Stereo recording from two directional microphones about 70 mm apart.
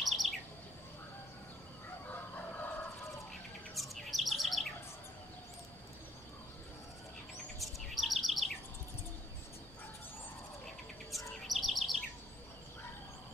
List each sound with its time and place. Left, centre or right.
0.0 s bird: centre
2.0 s chicken: left
3.7 s bird: centre
7.5 s bird: centre
11.1 s bird: centre